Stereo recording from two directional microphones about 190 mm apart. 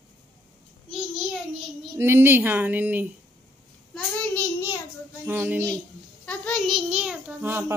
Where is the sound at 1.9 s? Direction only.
15° right (ahead or behind).